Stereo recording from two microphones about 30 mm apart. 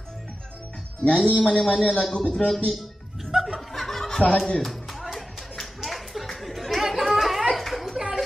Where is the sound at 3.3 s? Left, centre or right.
Centre.